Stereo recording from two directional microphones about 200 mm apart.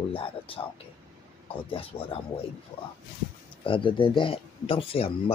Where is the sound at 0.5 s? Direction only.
25° left (ahead or behind).